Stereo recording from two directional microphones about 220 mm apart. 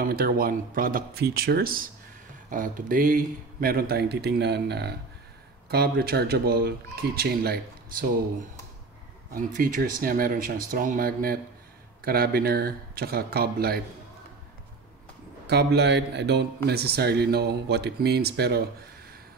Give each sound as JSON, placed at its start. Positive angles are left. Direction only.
{"t": 0.0, "sound": "speech", "side_deg": -40}
{"t": 9.3, "sound": "speech", "side_deg": -40}
{"t": 15.4, "sound": "speech", "side_deg": -50}